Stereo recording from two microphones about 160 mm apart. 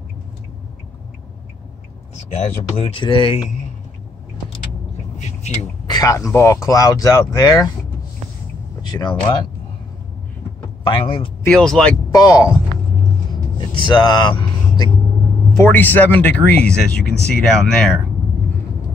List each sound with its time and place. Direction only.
2.3 s speech: 45° left (ahead or behind)
3.0 s speech: 30° left (ahead or behind)
5.2 s vehicle: 45° left (ahead or behind)
5.9 s speech: 20° left (ahead or behind)
8.8 s speech: 25° left (ahead or behind)
10.8 s a man's voice: 30° left (ahead or behind)
11.4 s speech: 5° left (ahead or behind)
12.1 s speech: 20° left (ahead or behind)
13.6 s speech: 30° left (ahead or behind)
15.5 s speech: 15° left (ahead or behind)